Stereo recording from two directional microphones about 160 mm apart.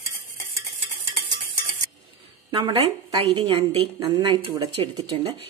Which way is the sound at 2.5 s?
30° right (ahead or behind).